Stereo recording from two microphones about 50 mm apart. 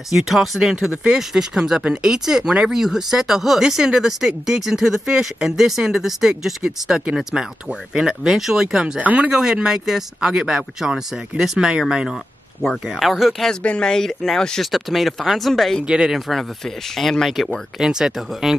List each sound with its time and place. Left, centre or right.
0.1 s speech: centre
9.0 s speech: right
9.3 s speech: centre
12.8 s speech: centre
13.5 s speech: centre
14.6 s speech: centre
15.8 s speech: centre
16.3 s speech: centre
17.7 s speech: centre